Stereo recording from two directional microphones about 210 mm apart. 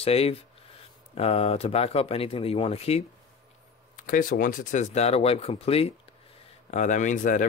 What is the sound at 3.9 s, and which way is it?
Speech, 40° left (ahead or behind).